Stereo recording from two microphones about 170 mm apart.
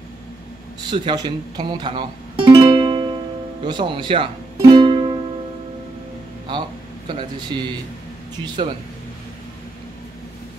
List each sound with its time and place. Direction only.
0.7 s speech: 30° right (ahead or behind)
4.6 s music: 30° right (ahead or behind)
7.1 s speech: 30° right (ahead or behind)